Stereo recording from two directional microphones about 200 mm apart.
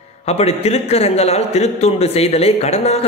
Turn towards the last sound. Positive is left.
turn(degrees=35)  # may be behind; listen again after turning